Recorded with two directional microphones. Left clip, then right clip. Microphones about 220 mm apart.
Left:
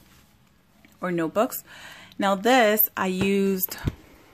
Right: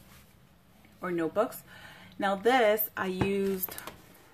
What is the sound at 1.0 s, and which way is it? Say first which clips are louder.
Speech: left 5 dB; 45° left (ahead or behind).